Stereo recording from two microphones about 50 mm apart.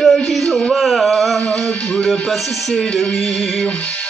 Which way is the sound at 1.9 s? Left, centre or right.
Centre.